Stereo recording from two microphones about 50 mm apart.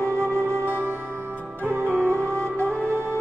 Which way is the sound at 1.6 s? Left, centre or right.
Right.